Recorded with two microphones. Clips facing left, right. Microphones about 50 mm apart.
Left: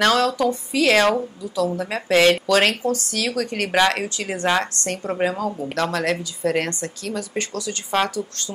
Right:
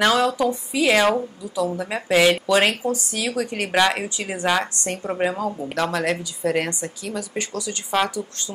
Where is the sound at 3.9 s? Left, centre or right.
Centre.